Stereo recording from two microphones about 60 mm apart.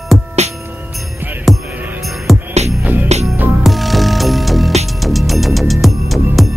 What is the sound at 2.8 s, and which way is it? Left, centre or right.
Jingle bell, right.